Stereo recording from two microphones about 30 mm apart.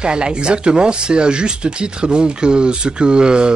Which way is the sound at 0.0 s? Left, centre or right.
Right.